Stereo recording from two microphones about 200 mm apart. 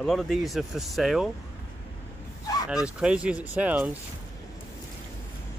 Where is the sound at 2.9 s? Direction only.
5° right (ahead or behind).